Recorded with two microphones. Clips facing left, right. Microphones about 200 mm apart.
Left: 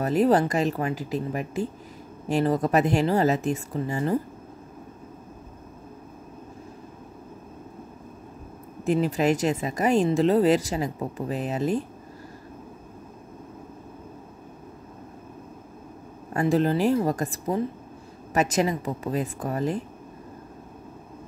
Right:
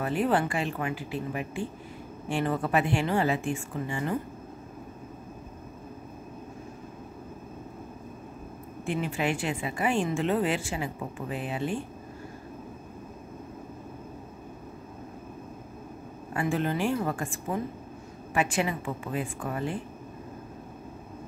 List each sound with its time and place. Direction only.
0.0 s speech: 40° left (ahead or behind)
8.8 s speech: 40° left (ahead or behind)
16.3 s speech: 35° left (ahead or behind)